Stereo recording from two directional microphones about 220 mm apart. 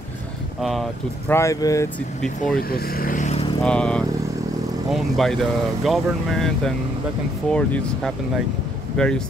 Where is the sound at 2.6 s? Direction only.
45° left (ahead or behind).